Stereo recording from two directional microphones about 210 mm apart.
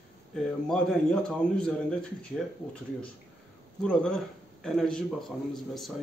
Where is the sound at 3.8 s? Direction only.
5° left (ahead or behind).